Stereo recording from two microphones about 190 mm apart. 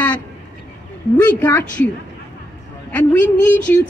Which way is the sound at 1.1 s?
10° left (ahead or behind).